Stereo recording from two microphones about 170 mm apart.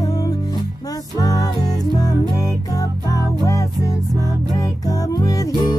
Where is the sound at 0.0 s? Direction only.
20° left (ahead or behind).